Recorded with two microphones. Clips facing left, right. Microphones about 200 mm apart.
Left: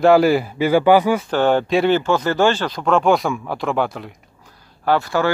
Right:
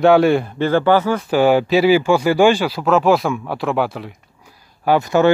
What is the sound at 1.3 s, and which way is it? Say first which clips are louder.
Speech: right 3 dB; 10° right (ahead or behind).